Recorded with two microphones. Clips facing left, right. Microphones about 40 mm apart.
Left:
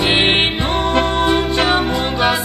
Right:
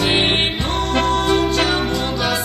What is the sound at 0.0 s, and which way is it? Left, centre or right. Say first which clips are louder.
Music: left 3 dB; left.